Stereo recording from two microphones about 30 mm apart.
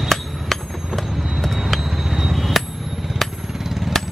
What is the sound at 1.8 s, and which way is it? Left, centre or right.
Bicycle bell, centre.